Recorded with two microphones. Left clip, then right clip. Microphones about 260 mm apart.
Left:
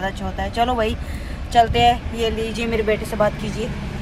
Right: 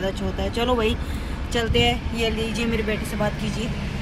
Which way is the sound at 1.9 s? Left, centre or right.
Centre.